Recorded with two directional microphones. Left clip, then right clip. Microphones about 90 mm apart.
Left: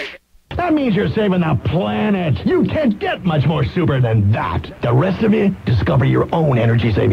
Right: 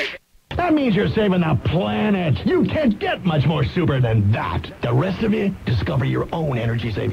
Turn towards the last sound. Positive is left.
turn(degrees=20)  # may be behind; listen again after turning